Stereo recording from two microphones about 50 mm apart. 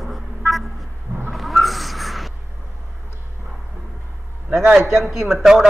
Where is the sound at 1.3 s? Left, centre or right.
Centre.